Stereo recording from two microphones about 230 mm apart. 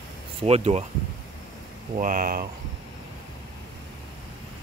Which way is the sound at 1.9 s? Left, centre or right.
Right.